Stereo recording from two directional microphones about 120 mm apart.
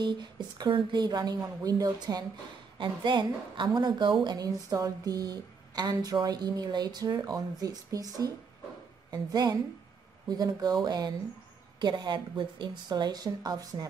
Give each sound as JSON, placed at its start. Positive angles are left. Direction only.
{"t": 0.0, "sound": "a woman's voice", "side_deg": -40}